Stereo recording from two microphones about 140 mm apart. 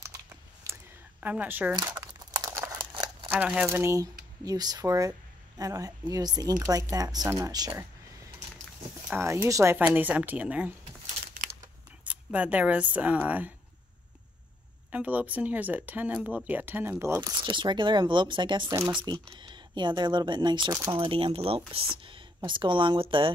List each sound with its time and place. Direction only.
1.2 s speech: 10° right (ahead or behind)
2.0 s crumpling: 25° right (ahead or behind)
2.9 s crumpling: 35° right (ahead or behind)
3.3 s speech: 10° right (ahead or behind); by 7.8 s 25° right (ahead or behind)
9.1 s speech: 20° right (ahead or behind)
12.0 s speech: 10° right (ahead or behind)
14.9 s speech: 10° right (ahead or behind)
17.2 s speech: 35° right (ahead or behind)
20.7 s speech: 20° right (ahead or behind)
21.1 s speech: 40° right (ahead or behind)